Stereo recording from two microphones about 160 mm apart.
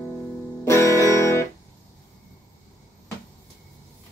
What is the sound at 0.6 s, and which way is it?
Music, 20° left (ahead or behind).